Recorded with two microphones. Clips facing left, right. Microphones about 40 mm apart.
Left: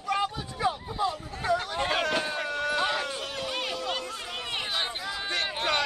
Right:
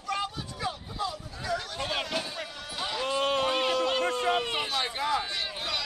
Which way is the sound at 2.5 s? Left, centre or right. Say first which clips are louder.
Left 12 dB; left.